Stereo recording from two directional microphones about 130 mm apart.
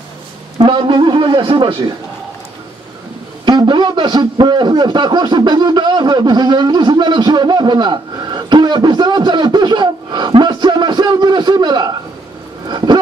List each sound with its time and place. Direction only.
0.7 s a man's voice: 40° right (ahead or behind)
3.4 s a man's voice: 35° right (ahead or behind)
12.6 s a sound: 35° right (ahead or behind)